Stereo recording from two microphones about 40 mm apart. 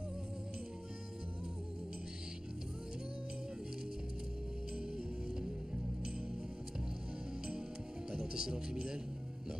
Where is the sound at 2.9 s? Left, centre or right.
Centre.